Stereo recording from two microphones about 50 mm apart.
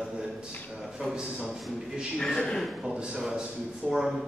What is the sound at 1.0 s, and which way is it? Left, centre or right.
Speech, centre.